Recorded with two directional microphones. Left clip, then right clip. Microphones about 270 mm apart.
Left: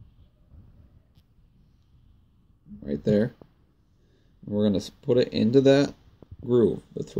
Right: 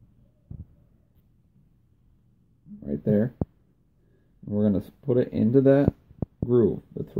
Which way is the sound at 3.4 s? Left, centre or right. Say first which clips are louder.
Right 18 dB; right.